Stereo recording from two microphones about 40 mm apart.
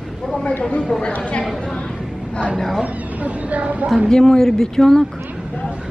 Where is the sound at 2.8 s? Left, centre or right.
Right.